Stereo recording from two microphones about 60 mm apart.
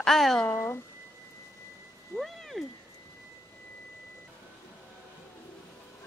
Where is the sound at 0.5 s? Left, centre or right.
Left.